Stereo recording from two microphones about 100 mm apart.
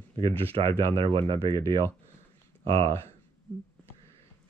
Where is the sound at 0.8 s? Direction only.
55° right (ahead or behind).